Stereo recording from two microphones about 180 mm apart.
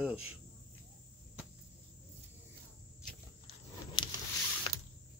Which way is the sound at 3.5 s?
25° left (ahead or behind).